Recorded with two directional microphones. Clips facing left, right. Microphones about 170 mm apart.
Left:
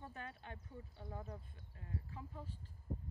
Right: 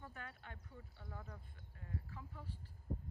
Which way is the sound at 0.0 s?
20° left (ahead or behind).